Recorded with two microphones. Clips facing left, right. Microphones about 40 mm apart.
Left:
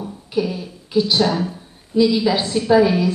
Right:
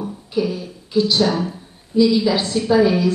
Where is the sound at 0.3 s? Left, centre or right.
Centre.